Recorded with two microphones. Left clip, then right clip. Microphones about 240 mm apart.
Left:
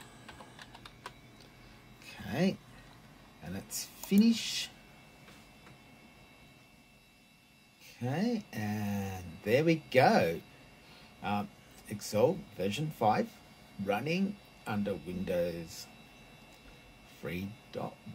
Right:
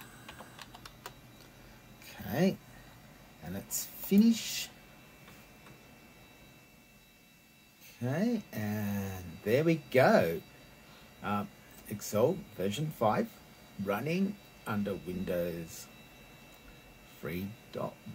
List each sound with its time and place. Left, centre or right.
2.0 s a sound: centre
3.4 s speech: centre
8.0 s speech: centre
17.2 s speech: centre